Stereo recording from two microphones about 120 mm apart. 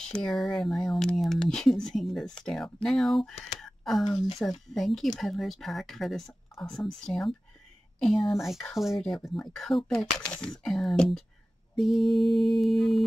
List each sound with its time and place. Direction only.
0.0 s speech: 5° left (ahead or behind)
3.5 s a sound: centre (ahead or behind)
4.4 s speech: centre (ahead or behind)